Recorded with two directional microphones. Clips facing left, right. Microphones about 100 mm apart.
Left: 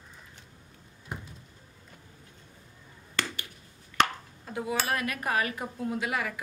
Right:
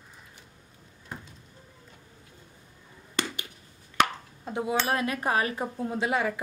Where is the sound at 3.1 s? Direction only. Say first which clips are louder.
Right 2 dB; 20° right (ahead or behind).